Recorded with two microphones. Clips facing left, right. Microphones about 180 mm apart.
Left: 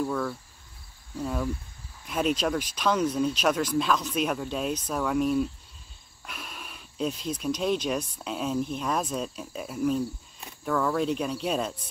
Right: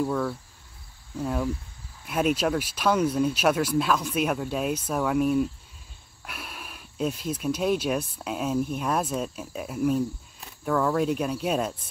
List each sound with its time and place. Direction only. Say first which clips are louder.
0.0 s speech: right 2 dB; 5° right (ahead or behind)